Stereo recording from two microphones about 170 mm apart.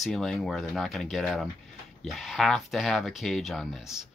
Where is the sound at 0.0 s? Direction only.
Centre (ahead or behind).